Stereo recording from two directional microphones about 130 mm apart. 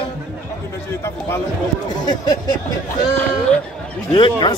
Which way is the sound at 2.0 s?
30° left (ahead or behind).